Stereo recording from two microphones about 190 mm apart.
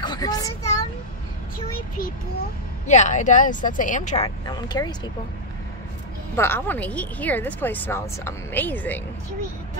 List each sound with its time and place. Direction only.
0.0 s a sound: 20° left (ahead or behind)
2.9 s a woman's voice: 40° left (ahead or behind)
4.5 s speech: 20° left (ahead or behind)
6.3 s speech: 10° left (ahead or behind)